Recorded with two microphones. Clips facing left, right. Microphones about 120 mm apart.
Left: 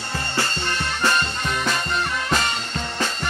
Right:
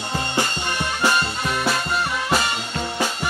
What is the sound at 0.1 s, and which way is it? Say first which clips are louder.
Music: right 2 dB; 15° right (ahead or behind).